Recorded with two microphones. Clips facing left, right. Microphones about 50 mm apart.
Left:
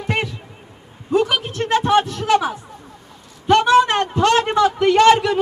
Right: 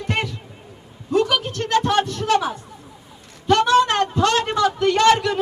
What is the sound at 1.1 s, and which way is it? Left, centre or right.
A woman's voice, centre.